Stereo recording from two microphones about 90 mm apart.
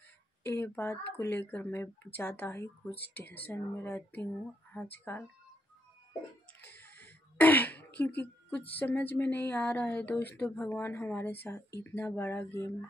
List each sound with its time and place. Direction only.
0.4 s speech: 25° left (ahead or behind)
6.6 s a sound: 20° left (ahead or behind)
8.7 s speech: 20° left (ahead or behind)